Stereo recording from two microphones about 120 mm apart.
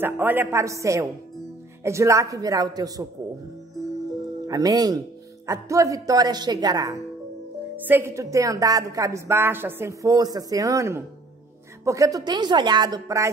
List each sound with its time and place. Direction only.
0.0 s speech: 15° right (ahead or behind)
4.5 s a woman's voice: 30° right (ahead or behind)
7.7 s a woman's voice: 15° right (ahead or behind)